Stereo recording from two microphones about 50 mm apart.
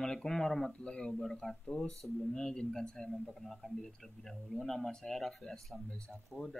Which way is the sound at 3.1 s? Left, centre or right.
Centre.